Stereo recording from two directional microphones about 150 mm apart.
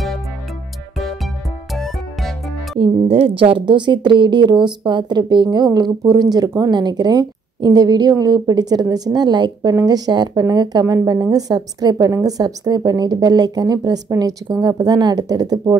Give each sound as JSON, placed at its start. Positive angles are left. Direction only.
{"t": 0.9, "sound": "music", "side_deg": 0}
{"t": 2.8, "sound": "a woman's voice", "side_deg": -40}